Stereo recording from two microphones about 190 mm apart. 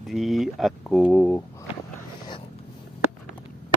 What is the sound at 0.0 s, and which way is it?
Speech, centre (ahead or behind).